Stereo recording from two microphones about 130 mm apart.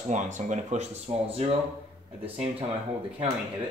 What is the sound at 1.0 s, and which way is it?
Speech, 50° right (ahead or behind).